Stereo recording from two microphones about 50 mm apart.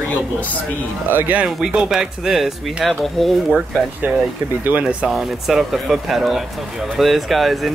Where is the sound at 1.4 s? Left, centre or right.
Centre.